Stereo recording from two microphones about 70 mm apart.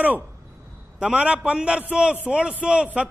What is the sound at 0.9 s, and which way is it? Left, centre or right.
A man's voice, centre.